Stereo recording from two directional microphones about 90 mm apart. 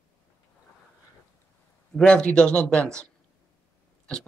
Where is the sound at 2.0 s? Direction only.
10° left (ahead or behind).